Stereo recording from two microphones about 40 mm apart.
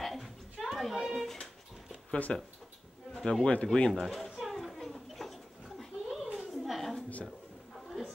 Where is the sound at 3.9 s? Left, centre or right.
Centre.